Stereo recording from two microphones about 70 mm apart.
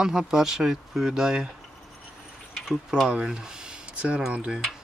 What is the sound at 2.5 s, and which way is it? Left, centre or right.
Speech, centre.